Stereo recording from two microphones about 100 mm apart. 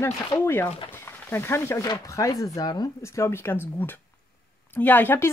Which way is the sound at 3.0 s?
30° left (ahead or behind).